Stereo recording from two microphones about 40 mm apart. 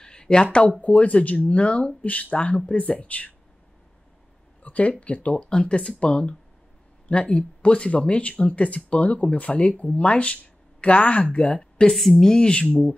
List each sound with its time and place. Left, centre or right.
0.0 s a sound: centre
0.7 s speech: left
2.3 s speech: left
4.6 s speech: left
11.3 s a woman's voice: left
11.9 s a woman's voice: centre
12.2 s speech: centre
12.4 s speech: left